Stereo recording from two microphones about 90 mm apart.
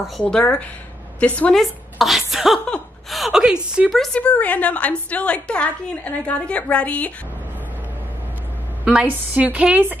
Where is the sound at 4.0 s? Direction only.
10° left (ahead or behind).